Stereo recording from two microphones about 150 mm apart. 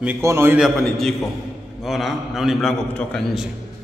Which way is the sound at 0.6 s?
5° left (ahead or behind).